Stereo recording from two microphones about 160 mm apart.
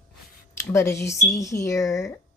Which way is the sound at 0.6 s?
15° left (ahead or behind).